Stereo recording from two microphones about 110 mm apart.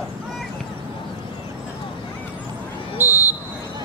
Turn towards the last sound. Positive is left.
turn(degrees=-15)  # may be behind; listen again after turning